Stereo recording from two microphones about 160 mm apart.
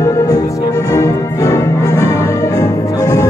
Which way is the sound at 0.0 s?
20° left (ahead or behind).